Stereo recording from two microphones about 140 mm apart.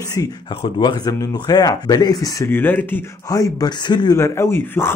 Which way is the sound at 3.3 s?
25° left (ahead or behind).